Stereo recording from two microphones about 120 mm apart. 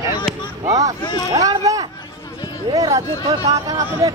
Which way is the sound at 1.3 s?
30° right (ahead or behind).